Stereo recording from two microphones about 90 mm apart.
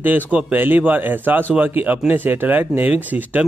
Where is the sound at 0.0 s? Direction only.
20° right (ahead or behind).